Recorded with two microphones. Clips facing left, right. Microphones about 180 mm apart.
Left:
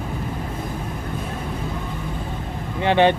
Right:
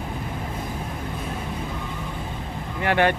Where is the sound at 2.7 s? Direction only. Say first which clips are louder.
Left 4 dB; 20° left (ahead or behind).